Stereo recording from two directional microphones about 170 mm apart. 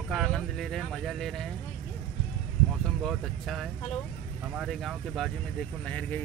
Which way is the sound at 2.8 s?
Centre (ahead or behind).